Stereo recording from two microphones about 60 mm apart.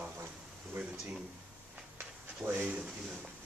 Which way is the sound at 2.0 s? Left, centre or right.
Right.